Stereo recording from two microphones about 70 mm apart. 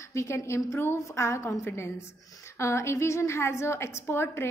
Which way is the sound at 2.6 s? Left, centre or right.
Left.